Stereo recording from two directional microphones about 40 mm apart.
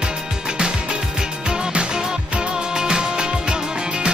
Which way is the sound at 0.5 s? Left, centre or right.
Right.